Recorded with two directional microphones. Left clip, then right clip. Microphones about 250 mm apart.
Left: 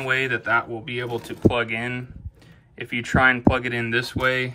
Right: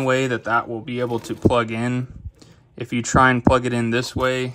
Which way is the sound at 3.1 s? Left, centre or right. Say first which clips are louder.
Right 3 dB; left.